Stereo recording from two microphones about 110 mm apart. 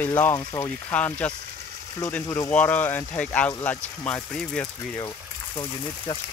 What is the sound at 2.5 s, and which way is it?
Speech, 15° left (ahead or behind).